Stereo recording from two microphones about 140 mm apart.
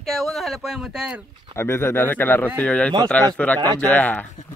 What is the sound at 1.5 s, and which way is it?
Speech, 15° left (ahead or behind).